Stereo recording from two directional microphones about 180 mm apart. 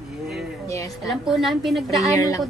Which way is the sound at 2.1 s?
20° left (ahead or behind).